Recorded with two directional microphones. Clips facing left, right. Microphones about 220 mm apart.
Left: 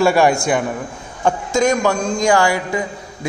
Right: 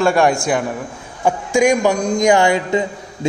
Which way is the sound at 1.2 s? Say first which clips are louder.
Right 2 dB; 10° right (ahead or behind).